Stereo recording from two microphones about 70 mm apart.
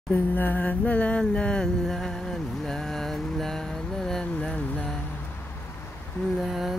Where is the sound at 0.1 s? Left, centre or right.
Left; by 4.9 s centre.